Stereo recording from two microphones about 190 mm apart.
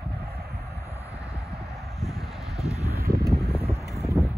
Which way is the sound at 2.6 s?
15° left (ahead or behind).